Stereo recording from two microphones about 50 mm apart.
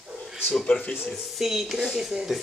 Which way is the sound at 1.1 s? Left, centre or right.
Centre.